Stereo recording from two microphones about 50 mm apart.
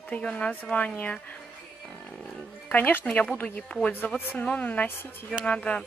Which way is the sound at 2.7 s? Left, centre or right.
Left.